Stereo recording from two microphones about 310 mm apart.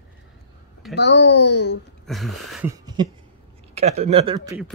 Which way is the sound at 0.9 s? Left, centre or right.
Left.